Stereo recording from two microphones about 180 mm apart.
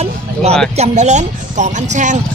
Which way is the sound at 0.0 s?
35° right (ahead or behind).